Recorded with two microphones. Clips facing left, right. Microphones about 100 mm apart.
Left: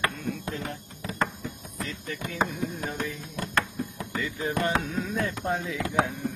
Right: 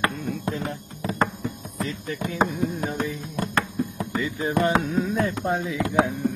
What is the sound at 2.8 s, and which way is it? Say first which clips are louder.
Music: right 5 dB; 30° right (ahead or behind).